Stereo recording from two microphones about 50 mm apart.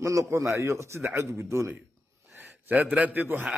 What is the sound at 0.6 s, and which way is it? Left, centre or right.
Speech, right.